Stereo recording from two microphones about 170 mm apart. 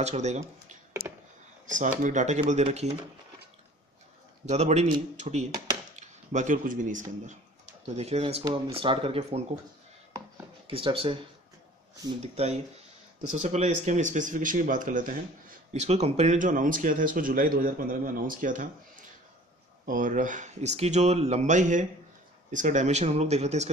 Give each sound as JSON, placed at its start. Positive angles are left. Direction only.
{"t": 0.0, "sound": "speech", "side_deg": -40}
{"t": 1.0, "sound": "a sound", "side_deg": -65}
{"t": 1.7, "sound": "speech", "side_deg": -50}
{"t": 4.5, "sound": "speech", "side_deg": -40}
{"t": 10.7, "sound": "speech", "side_deg": -30}
{"t": 12.2, "sound": "speech", "side_deg": -40}